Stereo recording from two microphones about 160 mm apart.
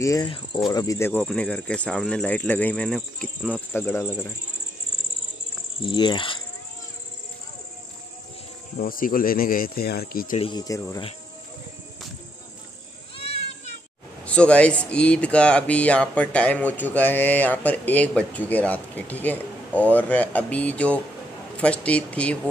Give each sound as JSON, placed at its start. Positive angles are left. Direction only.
{"t": 0.0, "sound": "cricket", "side_deg": 20}
{"t": 1.2, "sound": "speech", "side_deg": 5}
{"t": 5.8, "sound": "speech", "side_deg": 30}
{"t": 8.7, "sound": "speech", "side_deg": 60}
{"t": 10.3, "sound": "speech", "side_deg": 35}
{"t": 10.6, "sound": "cricket", "side_deg": 20}
{"t": 13.2, "sound": "children playing", "side_deg": 40}
{"t": 14.2, "sound": "a man's voice", "side_deg": 5}